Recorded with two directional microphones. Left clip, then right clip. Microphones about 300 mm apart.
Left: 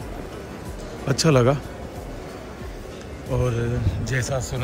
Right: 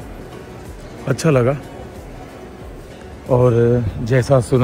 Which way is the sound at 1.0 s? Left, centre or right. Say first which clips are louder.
Right 3 dB; centre.